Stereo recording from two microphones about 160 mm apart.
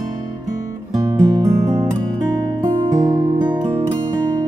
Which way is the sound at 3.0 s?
25° right (ahead or behind).